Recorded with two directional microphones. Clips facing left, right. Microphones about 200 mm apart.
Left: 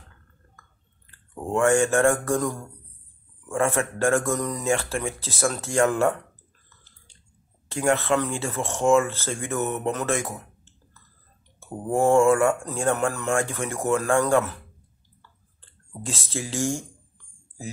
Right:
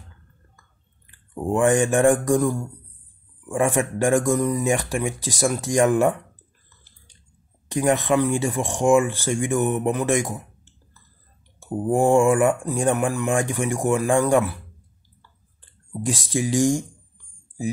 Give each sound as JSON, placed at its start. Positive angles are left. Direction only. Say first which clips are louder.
{"t": 0.6, "sound": "speech", "louder": "left 1 dB", "side_deg": -15}
{"t": 7.6, "sound": "speech", "louder": "right 2 dB", "side_deg": -15}
{"t": 15.6, "sound": "clicking", "louder": "right 8 dB", "side_deg": -15}